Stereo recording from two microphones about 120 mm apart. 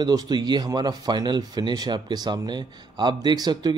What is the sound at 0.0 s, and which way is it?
Speech, 35° right (ahead or behind).